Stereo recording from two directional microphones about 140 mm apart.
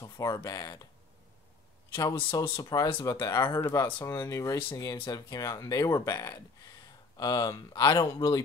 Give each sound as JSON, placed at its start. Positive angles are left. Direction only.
{"t": 0.0, "sound": "speech", "side_deg": 25}
{"t": 2.0, "sound": "speech", "side_deg": 30}